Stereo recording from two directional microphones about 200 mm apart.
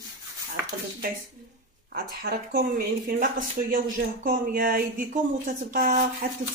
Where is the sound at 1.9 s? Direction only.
50° right (ahead or behind).